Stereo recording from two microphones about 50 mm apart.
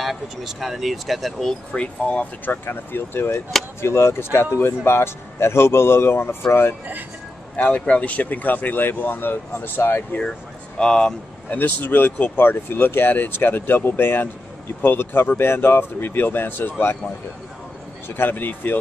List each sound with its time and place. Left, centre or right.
0.0 s speech: centre
1.5 s speech: centre
2.4 s speech: left
3.8 s a man's voice: left
7.5 s speech: left
10.8 s speech: centre
11.5 s speech: left
18.0 s speech: left